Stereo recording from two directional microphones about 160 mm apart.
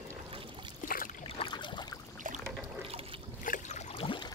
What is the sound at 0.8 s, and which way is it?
Boat, 55° left (ahead or behind).